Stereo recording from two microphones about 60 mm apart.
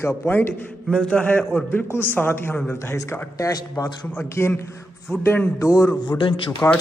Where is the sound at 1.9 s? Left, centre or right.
Left.